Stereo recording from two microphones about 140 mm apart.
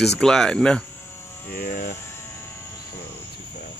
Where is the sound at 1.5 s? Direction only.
90° left.